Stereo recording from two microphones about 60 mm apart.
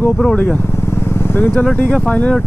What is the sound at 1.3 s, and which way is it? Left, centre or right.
Speech, left.